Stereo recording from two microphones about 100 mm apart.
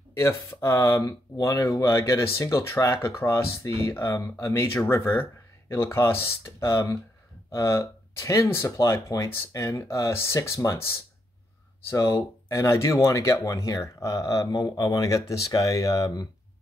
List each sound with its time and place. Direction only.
0.1 s speech: 25° left (ahead or behind)
11.9 s speech: 30° left (ahead or behind)